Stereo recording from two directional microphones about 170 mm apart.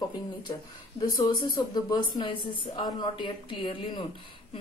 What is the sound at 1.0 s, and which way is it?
A woman's voice, 25° left (ahead or behind).